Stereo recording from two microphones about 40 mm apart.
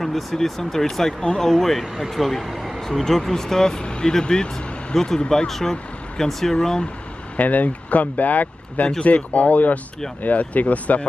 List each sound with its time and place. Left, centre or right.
0.0 s speech: centre
2.8 s speech: centre
7.3 s speech: left